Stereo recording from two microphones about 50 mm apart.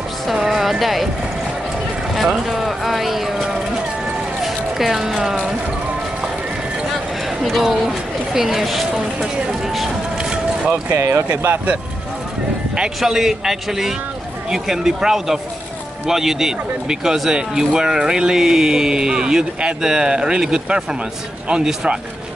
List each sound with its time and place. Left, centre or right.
0.3 s speech: centre
2.2 s speech: centre
7.4 s speech: centre
10.3 s a sound: centre
11.0 s speech: right
12.7 s speech: centre